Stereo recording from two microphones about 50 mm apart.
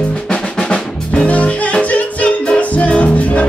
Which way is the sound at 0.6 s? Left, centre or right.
Left.